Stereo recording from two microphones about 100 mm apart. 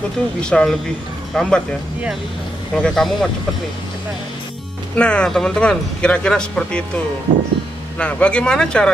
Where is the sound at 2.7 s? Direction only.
5° left (ahead or behind).